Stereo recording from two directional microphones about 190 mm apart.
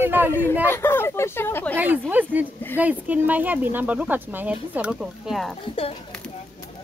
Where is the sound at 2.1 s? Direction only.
10° right (ahead or behind).